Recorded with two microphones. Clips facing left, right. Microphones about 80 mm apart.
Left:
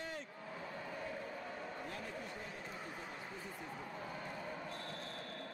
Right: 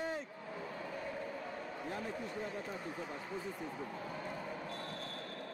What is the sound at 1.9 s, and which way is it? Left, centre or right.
Speech, right.